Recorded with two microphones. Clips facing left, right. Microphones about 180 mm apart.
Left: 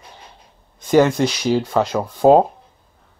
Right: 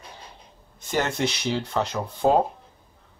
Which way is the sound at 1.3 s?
90° left.